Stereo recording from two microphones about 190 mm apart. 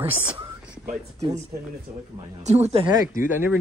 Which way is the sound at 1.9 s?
45° right (ahead or behind).